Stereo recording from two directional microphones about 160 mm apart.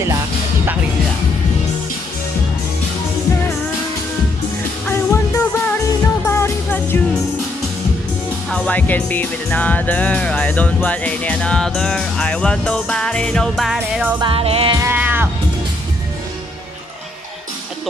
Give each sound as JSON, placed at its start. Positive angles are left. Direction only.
{"t": 4.8, "sound": "music", "side_deg": 15}
{"t": 8.5, "sound": "speech", "side_deg": 10}
{"t": 14.2, "sound": "music", "side_deg": -35}
{"t": 14.8, "sound": "music", "side_deg": -10}